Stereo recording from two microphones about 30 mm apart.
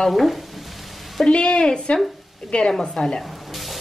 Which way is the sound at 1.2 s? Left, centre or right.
Left.